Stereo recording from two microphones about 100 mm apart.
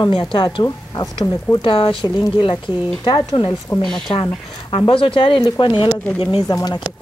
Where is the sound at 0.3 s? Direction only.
55° left (ahead or behind).